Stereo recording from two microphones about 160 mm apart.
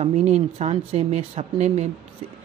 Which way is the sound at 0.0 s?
40° right (ahead or behind).